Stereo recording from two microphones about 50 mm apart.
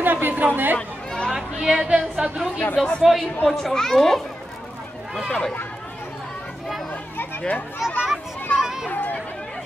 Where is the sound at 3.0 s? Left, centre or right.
Centre.